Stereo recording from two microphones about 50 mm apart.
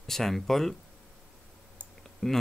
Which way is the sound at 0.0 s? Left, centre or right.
Centre.